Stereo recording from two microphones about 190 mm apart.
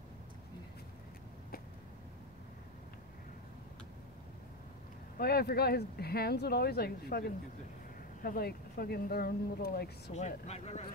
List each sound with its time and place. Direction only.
5.1 s speech: 55° left (ahead or behind)
10.1 s speech: 35° left (ahead or behind)